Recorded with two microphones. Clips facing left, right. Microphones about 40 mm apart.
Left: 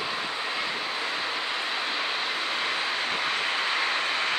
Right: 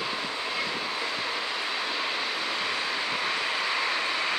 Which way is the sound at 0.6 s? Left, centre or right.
Left.